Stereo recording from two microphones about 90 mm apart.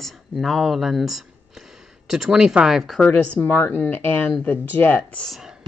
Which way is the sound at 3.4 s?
20° left (ahead or behind).